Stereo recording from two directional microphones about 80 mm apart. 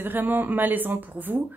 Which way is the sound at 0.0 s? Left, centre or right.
Right.